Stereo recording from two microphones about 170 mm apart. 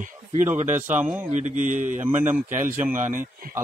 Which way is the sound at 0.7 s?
10° right (ahead or behind).